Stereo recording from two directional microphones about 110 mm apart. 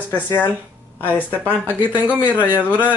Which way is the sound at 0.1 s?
20° left (ahead or behind).